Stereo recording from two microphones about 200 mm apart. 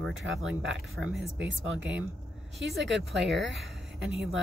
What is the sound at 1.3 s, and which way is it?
Speech, 5° right (ahead or behind).